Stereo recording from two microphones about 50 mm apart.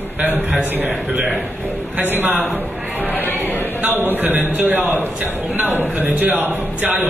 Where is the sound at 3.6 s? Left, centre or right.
Right.